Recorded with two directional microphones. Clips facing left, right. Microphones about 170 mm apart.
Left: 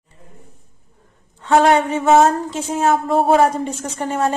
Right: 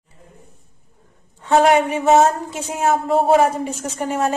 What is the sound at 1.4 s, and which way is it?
A woman's voice, 10° right (ahead or behind).